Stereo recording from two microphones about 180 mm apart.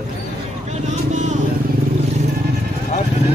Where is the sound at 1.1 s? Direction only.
40° right (ahead or behind).